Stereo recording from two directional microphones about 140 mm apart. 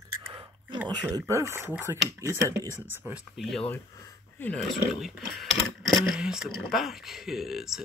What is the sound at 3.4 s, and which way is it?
Speech, 5° left (ahead or behind).